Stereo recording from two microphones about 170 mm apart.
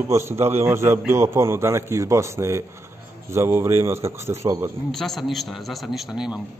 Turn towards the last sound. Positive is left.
turn(degrees=-5)  # may be behind; listen again after turning